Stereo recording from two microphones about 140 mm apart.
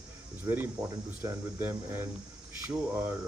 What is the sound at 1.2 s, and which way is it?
A man's voice, 15° right (ahead or behind).